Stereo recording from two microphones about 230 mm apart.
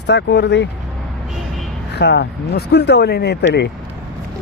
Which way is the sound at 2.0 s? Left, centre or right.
Left.